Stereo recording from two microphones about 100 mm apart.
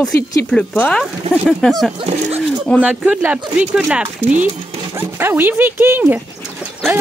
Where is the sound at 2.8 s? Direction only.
10° right (ahead or behind).